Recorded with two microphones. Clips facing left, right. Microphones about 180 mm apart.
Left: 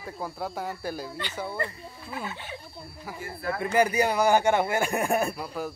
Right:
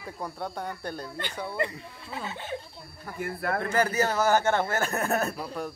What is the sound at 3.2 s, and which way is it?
Speech, 55° right (ahead or behind).